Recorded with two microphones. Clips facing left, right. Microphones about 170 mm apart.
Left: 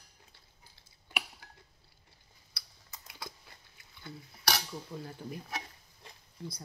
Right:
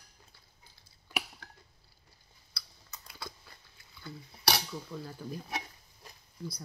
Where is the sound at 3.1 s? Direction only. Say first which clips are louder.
Right 1 dB; 20° left (ahead or behind).